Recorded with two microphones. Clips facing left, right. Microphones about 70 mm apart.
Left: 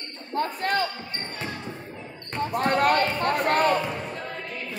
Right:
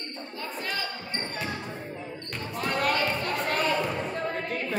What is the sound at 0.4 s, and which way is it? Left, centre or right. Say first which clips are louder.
Speech: left 9 dB; left.